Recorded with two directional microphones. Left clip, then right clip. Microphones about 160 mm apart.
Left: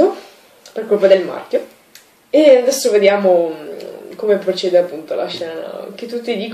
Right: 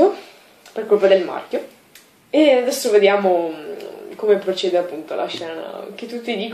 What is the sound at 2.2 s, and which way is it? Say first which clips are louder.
Speech: left 5 dB; 15° left (ahead or behind).